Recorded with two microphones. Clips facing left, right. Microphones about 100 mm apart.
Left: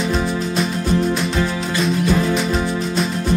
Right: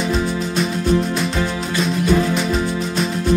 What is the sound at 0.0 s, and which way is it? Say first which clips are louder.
Music: even; centre (ahead or behind).